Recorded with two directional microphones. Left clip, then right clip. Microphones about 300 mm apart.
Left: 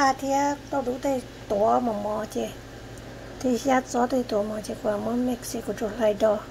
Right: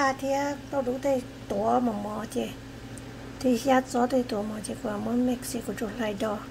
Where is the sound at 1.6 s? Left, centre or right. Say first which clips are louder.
Left 3 dB; centre.